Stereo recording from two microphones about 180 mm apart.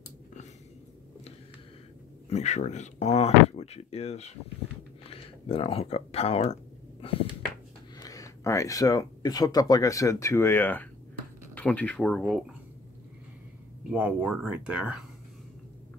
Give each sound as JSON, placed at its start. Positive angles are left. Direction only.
{"t": 2.2, "sound": "speech", "side_deg": 40}
{"t": 8.0, "sound": "speech", "side_deg": 20}
{"t": 13.8, "sound": "speech", "side_deg": -5}